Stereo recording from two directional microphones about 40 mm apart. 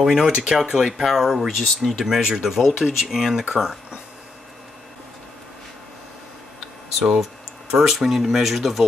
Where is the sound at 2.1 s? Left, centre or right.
Centre.